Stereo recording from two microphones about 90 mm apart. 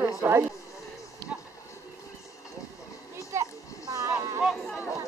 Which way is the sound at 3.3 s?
35° right (ahead or behind).